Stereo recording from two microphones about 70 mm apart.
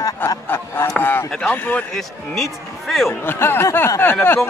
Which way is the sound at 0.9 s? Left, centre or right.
Left.